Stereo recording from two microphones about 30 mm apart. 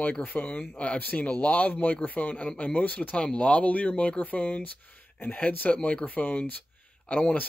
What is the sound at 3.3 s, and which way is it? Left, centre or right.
A man's voice, left.